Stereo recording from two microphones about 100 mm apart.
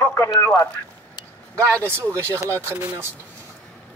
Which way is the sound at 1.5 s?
15° left (ahead or behind).